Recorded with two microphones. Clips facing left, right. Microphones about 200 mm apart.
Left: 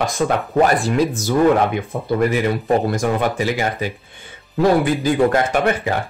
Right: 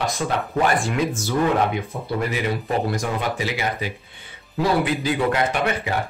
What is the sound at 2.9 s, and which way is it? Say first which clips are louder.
Speech: left 6 dB; 50° left (ahead or behind).